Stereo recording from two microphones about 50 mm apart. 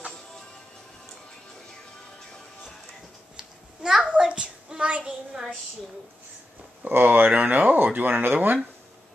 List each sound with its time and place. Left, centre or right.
3.3 s babbling: centre
4.1 s a sound: right
6.9 s speech: right